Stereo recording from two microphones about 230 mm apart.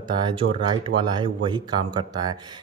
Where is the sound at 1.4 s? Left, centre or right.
Centre.